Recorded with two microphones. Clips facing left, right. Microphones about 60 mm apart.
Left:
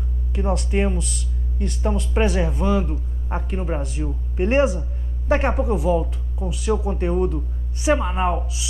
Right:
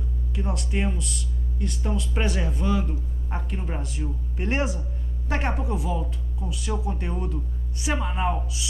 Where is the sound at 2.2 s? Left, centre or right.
Left.